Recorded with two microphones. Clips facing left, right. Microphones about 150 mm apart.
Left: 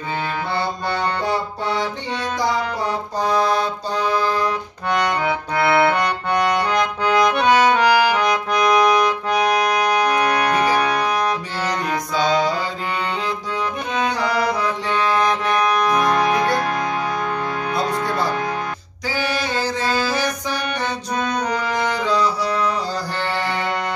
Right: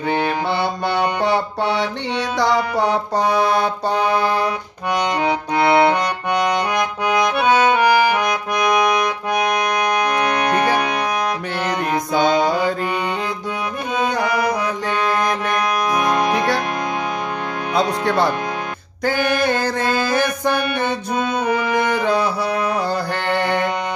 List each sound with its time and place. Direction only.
0.5 s music: 70° right (ahead or behind)
4.5 s accordion: 15° right (ahead or behind)
12.1 s mantra: 55° right (ahead or behind)
14.5 s music: 15° right (ahead or behind)
17.7 s music: 75° right (ahead or behind)
19.0 s music: 55° right (ahead or behind)
21.2 s music: 5° right (ahead or behind)
21.7 s music: 55° right (ahead or behind)